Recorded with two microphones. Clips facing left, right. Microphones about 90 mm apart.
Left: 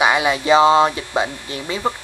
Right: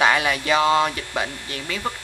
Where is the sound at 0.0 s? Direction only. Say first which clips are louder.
Left 3 dB; 20° left (ahead or behind).